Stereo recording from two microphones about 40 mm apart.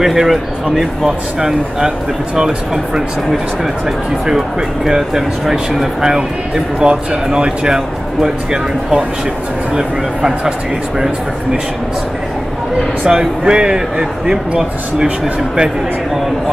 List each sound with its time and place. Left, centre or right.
0.0 s speech: centre
2.3 s speech: centre
4.3 s speech: centre
13.1 s speech: centre